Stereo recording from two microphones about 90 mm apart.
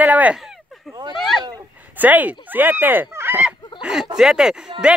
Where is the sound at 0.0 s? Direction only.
15° right (ahead or behind).